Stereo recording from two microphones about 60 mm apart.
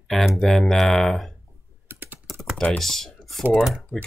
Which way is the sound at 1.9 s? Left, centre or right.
Right.